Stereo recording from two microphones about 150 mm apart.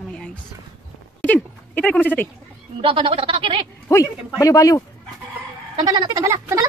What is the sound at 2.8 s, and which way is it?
Speech, 35° right (ahead or behind).